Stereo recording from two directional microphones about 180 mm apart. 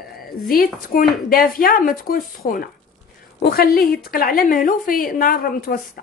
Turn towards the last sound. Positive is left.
turn(degrees=50)  # may be behind; listen again after turning